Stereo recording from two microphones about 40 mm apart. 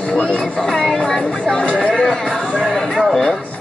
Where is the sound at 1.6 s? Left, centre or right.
Left.